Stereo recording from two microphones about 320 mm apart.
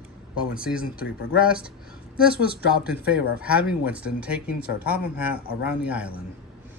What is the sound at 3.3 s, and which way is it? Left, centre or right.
Speech, centre.